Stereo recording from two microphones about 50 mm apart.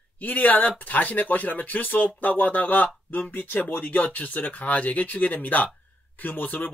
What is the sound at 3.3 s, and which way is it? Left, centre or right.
Speech, left.